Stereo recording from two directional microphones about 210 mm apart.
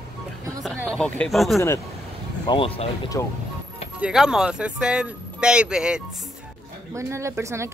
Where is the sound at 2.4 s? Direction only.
25° left (ahead or behind).